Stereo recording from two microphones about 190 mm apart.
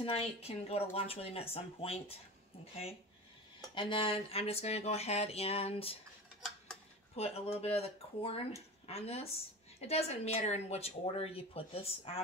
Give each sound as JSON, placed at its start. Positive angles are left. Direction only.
{"t": 0.0, "sound": "speech", "side_deg": 30}
{"t": 3.7, "sound": "speech", "side_deg": 25}
{"t": 7.2, "sound": "speech", "side_deg": 30}